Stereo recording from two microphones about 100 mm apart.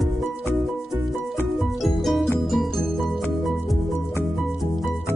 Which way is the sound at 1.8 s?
Centre (ahead or behind).